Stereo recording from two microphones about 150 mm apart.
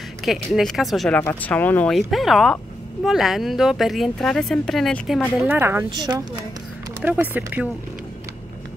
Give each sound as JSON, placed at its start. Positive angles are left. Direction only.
{"t": 0.2, "sound": "speech", "side_deg": 0}
{"t": 5.4, "sound": "speech", "side_deg": -15}
{"t": 5.9, "sound": "a woman's voice", "side_deg": -25}
{"t": 7.0, "sound": "speech", "side_deg": -10}